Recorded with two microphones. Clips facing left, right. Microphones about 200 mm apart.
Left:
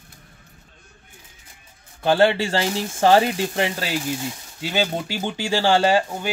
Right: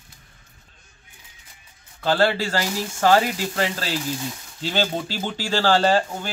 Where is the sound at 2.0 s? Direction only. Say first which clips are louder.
Left 3 dB; 20° left (ahead or behind).